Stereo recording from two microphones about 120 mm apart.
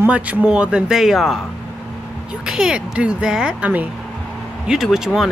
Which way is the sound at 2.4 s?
10° right (ahead or behind).